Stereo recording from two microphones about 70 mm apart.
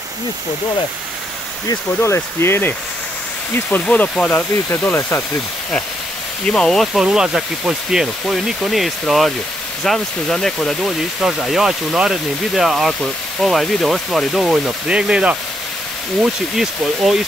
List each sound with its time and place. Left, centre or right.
2.0 s speech: left
3.8 s speech: centre
6.4 s speech: centre
7.1 s speech: centre
14.9 s speech: centre